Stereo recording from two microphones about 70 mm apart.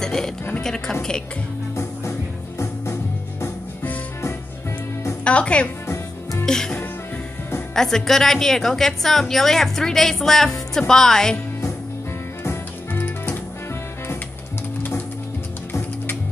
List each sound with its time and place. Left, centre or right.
0.0 s a sound: centre
0.6 s speech: centre
2.6 s music: left
5.2 s speech: centre
6.4 s music: centre
7.7 s a woman's voice: centre
12.4 s music: left
14.8 s music: left